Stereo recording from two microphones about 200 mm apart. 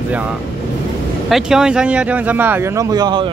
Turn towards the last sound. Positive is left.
turn(degrees=-20)  # may be behind; listen again after turning